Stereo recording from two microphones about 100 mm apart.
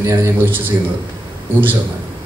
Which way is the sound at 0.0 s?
25° right (ahead or behind).